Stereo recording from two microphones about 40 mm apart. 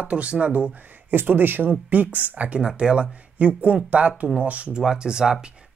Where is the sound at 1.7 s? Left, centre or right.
Right.